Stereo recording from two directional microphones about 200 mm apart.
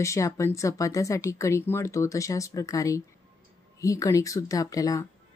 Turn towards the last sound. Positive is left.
turn(degrees=15)  # may be behind; listen again after turning